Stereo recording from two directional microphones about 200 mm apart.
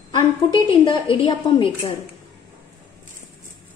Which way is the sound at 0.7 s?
25° left (ahead or behind).